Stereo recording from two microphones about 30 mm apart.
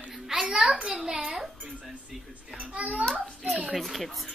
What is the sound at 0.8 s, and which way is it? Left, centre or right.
Speech, right.